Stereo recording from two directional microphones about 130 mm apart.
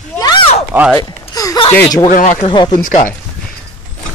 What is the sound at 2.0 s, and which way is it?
Speech, 80° left.